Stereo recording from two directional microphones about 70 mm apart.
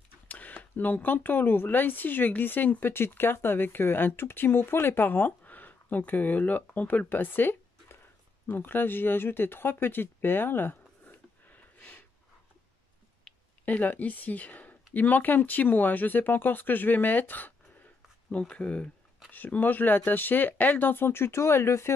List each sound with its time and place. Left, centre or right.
0.3 s speech: left
13.3 s a sound: centre
13.7 s speech: left
18.5 s speech: centre; by 21.9 s left